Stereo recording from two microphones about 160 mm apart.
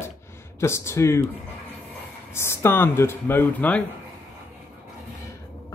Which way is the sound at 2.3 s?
15° left (ahead or behind).